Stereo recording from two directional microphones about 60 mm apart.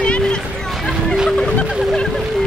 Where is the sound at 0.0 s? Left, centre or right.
Centre.